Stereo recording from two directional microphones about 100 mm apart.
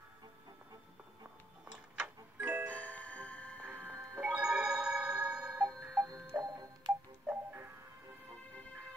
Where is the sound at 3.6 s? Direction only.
20° right (ahead or behind); by 6.0 s centre (ahead or behind).